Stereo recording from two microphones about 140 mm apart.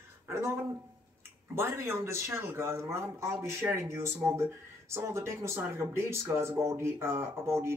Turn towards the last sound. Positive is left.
turn(degrees=-20)  # may be behind; listen again after turning